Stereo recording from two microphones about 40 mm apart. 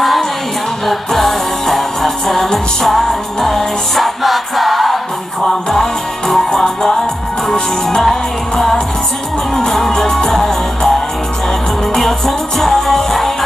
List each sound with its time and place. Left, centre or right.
0.8 s music: centre